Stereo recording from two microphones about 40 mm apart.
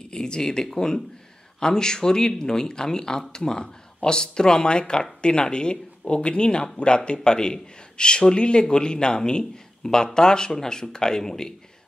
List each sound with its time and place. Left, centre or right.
0.1 s a man's voice: centre